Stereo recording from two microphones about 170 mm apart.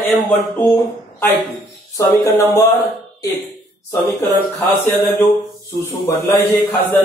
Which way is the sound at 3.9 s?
15° left (ahead or behind).